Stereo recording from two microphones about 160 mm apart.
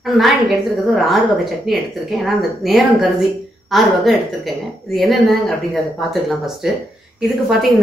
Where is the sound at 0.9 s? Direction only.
Centre (ahead or behind).